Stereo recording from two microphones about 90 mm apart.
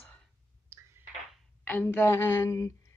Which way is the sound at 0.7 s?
30° right (ahead or behind).